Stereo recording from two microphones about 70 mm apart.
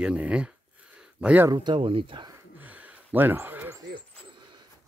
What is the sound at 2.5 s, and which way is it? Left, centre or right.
Gasp, right.